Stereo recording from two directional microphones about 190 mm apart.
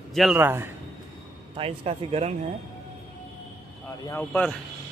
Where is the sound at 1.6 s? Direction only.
30° right (ahead or behind).